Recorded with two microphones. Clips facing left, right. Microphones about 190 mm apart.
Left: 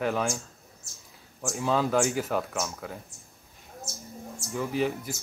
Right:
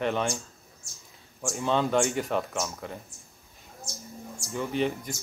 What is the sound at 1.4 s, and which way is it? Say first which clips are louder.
Speech: even; 5° left (ahead or behind).